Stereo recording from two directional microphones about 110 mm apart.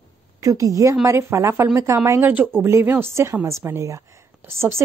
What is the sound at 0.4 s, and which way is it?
A woman's voice, 30° right (ahead or behind).